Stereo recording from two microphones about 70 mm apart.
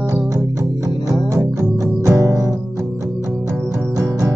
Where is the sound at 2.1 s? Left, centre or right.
Right.